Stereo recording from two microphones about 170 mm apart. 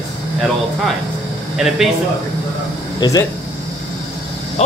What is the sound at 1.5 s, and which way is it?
Speech, centre (ahead or behind).